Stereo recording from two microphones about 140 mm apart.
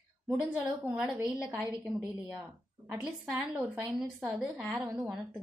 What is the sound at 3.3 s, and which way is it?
A woman's voice, 10° right (ahead or behind).